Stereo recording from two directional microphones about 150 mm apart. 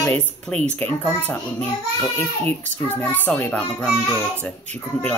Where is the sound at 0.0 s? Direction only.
10° left (ahead or behind).